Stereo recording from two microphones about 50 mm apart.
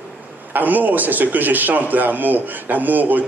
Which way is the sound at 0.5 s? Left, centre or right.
Right.